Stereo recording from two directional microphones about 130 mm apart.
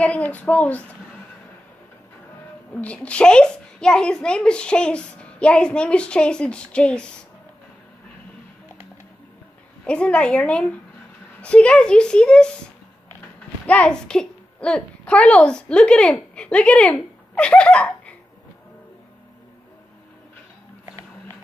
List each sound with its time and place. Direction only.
0.0 s a child's voice: 10° left (ahead or behind)
2.7 s a child's voice: 10° left (ahead or behind)
9.8 s a child's voice: 10° left (ahead or behind)
13.7 s a woman's voice: 10° left (ahead or behind)